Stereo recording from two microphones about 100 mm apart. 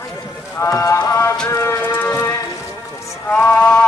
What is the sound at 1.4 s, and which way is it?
Music, 25° left (ahead or behind).